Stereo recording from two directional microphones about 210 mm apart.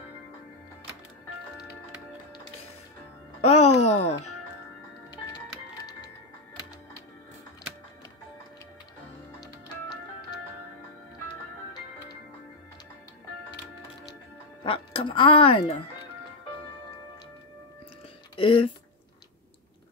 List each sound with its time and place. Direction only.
3.3 s music: 30° left (ahead or behind)
3.9 s speech: 30° left (ahead or behind)
14.6 s speech: 25° left (ahead or behind)
18.3 s speech: 25° left (ahead or behind)